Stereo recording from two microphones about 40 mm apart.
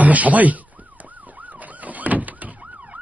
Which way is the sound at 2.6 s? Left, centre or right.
Right.